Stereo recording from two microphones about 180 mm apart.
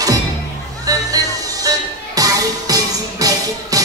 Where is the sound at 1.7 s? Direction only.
20° right (ahead or behind).